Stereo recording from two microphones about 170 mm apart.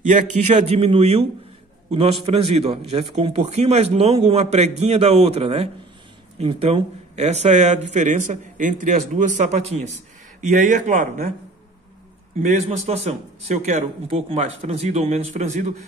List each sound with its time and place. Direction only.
0.0 s a man's voice: 45° right (ahead or behind)
12.4 s a man's voice: 45° right (ahead or behind)